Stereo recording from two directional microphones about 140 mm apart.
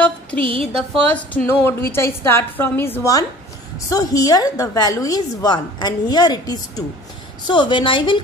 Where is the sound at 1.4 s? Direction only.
15° left (ahead or behind).